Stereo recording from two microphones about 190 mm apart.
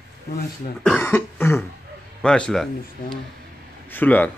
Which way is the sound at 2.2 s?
5° left (ahead or behind).